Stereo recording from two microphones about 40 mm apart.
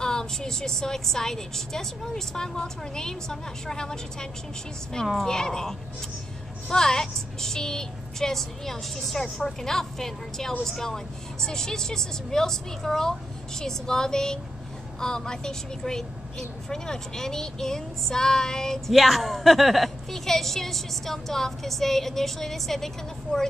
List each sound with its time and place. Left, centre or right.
0.0 s a woman's voice: centre
18.9 s a woman's voice: centre